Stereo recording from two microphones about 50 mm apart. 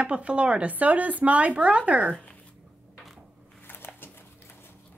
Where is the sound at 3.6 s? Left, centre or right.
Left.